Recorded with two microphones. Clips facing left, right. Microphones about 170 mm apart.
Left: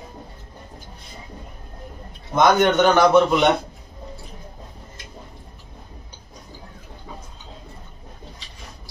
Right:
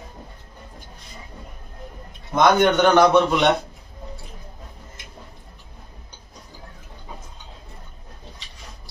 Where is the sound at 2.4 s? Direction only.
Centre (ahead or behind).